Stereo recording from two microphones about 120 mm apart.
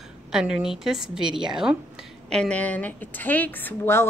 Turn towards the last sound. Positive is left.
turn(degrees=20)  # may be behind; listen again after turning